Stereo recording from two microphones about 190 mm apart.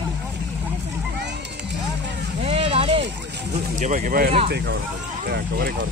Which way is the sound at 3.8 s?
45° right (ahead or behind).